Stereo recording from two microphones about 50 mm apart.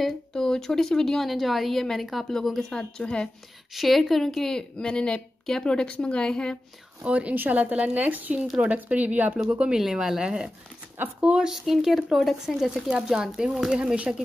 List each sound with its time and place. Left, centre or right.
0.3 s a woman's voice: centre
3.7 s a woman's voice: centre
7.1 s a woman's voice: right
9.9 s speech: centre; by 11.4 s right
11.4 s speech: centre
12.4 s speech: centre